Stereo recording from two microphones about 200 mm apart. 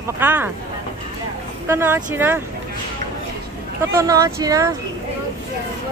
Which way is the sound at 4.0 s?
15° right (ahead or behind).